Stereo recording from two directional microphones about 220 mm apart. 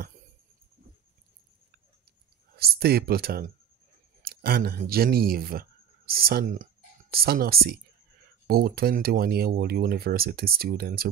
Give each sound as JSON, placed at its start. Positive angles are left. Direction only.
{"t": 2.5, "sound": "speech", "side_deg": -45}